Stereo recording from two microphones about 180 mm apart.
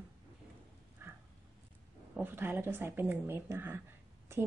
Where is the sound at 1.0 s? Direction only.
10° right (ahead or behind).